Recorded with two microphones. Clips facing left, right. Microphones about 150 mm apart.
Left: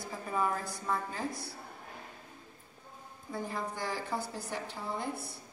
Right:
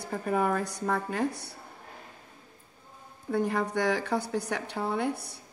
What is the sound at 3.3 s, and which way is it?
A woman's voice, 70° right (ahead or behind).